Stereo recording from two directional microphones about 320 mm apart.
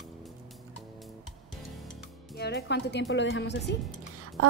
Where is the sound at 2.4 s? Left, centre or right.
Left.